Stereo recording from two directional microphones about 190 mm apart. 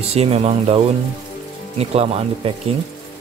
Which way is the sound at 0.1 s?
30° right (ahead or behind).